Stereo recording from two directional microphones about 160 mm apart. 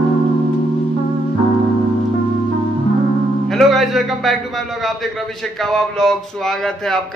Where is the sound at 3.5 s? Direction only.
Centre (ahead or behind).